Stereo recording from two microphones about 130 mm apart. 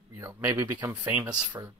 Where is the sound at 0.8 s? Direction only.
15° right (ahead or behind).